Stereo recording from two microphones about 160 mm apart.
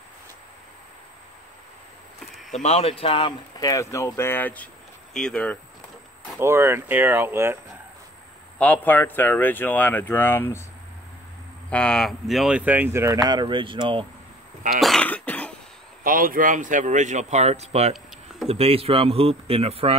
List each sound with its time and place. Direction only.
2.6 s speech: 40° left (ahead or behind); by 5.6 s 5° left (ahead or behind)
6.4 s speech: 15° right (ahead or behind)
8.5 s speech: 10° left (ahead or behind)
11.7 s speech: 5° left (ahead or behind); by 14.0 s 30° right (ahead or behind)
14.7 s throat clearing: centre (ahead or behind)
16.0 s speech: 60° right (ahead or behind); by 20.0 s 40° right (ahead or behind)